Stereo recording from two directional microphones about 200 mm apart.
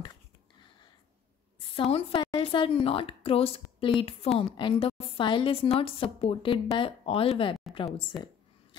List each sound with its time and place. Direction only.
1.8 s speech: 25° left (ahead or behind)